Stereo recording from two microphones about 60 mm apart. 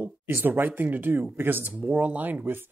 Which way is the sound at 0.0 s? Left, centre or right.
Right.